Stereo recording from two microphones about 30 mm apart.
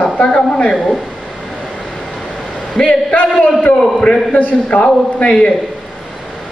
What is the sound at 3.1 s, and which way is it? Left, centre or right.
Speech, left.